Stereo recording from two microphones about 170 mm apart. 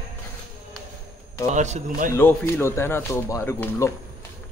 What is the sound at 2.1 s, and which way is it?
Speech, 15° left (ahead or behind).